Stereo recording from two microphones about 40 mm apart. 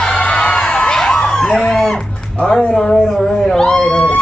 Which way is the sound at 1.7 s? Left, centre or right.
Centre.